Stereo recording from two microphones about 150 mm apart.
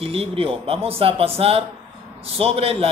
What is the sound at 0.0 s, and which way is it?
Speech, 40° right (ahead or behind).